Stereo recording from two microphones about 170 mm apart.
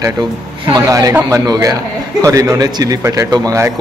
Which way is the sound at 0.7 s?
20° right (ahead or behind).